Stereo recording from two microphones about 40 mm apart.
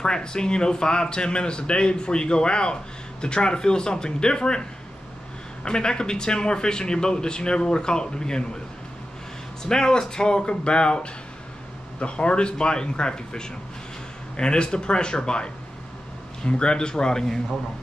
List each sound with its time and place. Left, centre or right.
0.0 s speech: centre
9.6 s speech: centre